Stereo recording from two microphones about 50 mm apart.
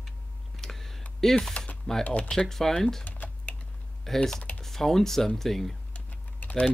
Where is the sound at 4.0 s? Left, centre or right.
Centre.